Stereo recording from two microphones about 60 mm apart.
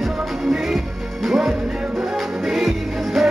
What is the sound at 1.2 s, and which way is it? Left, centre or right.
Music, centre.